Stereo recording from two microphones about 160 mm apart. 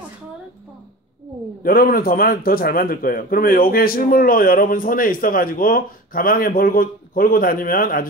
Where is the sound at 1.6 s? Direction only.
65° left (ahead or behind).